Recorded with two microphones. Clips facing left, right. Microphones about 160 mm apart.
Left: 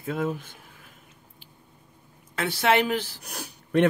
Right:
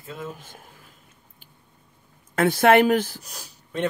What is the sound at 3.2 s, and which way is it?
Speech, 60° left (ahead or behind).